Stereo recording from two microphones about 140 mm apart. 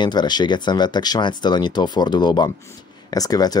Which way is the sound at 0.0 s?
30° left (ahead or behind).